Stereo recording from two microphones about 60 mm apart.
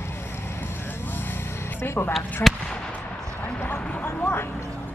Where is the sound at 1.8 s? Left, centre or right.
Left.